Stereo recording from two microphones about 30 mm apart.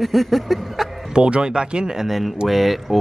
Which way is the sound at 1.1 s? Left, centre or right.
Right.